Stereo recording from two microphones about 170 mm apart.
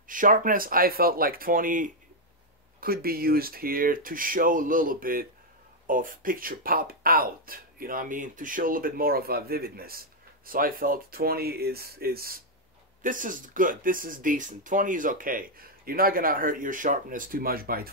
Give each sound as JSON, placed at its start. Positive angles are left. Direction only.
{"t": 0.0, "sound": "speech", "side_deg": -50}
{"t": 13.0, "sound": "speech", "side_deg": -50}